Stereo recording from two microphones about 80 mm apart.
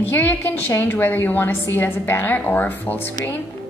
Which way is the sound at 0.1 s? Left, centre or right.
Left.